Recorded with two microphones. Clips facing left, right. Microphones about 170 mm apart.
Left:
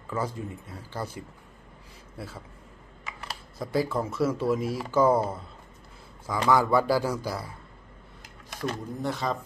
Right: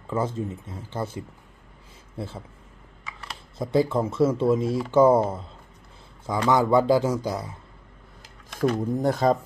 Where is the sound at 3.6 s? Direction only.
25° right (ahead or behind).